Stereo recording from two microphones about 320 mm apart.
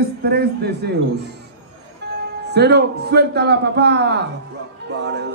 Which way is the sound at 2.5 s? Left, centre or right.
Right.